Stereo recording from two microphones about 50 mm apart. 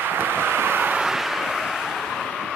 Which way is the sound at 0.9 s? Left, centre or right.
Centre.